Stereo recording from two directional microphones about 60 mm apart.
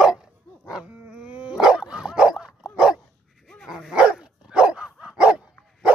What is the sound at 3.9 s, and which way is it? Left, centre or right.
Dog, centre.